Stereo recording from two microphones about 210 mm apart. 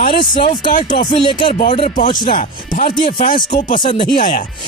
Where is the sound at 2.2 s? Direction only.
40° left (ahead or behind).